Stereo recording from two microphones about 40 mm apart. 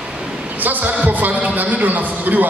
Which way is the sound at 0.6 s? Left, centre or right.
Right.